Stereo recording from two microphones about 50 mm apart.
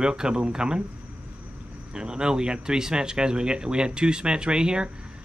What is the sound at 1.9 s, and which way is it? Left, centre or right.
Speech, centre.